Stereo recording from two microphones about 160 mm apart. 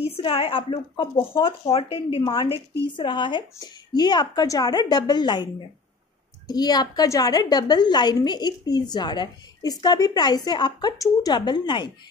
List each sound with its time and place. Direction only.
0.0 s a woman's voice: 35° left (ahead or behind)